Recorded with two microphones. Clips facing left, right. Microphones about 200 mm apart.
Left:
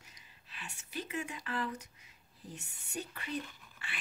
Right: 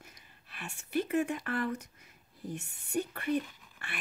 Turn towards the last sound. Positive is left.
turn(degrees=-60)  # may be behind; listen again after turning